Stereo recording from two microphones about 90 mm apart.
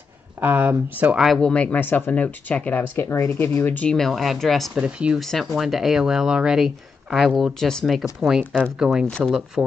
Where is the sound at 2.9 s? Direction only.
30° left (ahead or behind).